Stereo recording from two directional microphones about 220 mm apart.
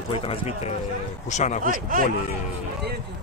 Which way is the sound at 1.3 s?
30° left (ahead or behind).